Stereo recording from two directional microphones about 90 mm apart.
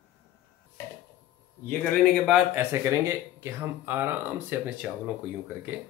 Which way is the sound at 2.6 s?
30° right (ahead or behind).